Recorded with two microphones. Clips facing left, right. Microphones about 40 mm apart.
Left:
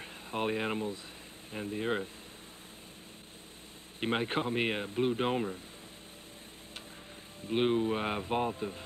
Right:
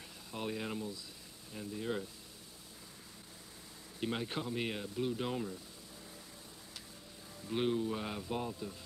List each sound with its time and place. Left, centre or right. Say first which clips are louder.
0.0 s speech: left 8 dB; left
4.0 s speech: left 6 dB; left
7.4 s speech: left 5 dB; left